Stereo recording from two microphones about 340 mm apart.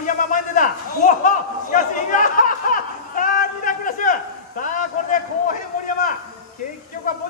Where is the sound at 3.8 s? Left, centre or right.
Left.